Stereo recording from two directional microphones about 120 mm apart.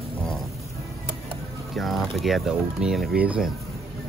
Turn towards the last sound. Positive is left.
turn(degrees=-5)  # may be behind; listen again after turning